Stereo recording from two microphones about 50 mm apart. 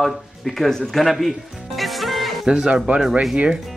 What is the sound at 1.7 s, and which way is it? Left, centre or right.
Music, centre.